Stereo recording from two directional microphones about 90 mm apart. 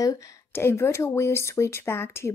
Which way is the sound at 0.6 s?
30° left (ahead or behind).